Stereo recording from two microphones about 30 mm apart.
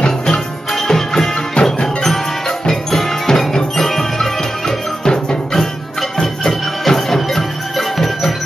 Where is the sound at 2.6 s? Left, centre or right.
Centre.